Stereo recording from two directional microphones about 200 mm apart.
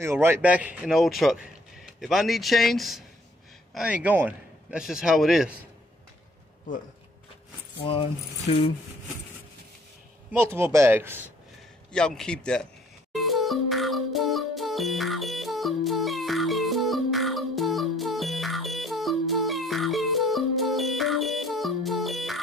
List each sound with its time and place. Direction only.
0.0 s a man's voice: 10° right (ahead or behind)
7.8 s speech: 30° left (ahead or behind)
10.3 s speech: 10° right (ahead or behind)
11.9 s a man's voice: 5° left (ahead or behind)
13.1 s music: centre (ahead or behind)